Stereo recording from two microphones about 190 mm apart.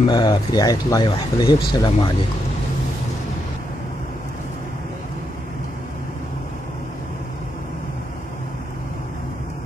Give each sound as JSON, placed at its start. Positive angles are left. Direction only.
{"t": 0.1, "sound": "speech", "side_deg": 20}